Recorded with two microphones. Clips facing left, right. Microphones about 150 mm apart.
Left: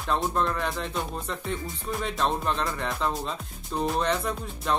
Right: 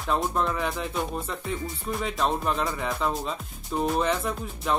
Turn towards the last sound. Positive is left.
turn(degrees=0)  # may be behind; listen again after turning